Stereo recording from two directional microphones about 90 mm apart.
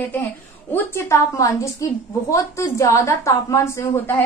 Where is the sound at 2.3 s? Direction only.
35° left (ahead or behind).